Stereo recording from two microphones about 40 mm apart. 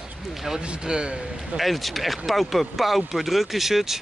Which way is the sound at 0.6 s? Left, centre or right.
Right.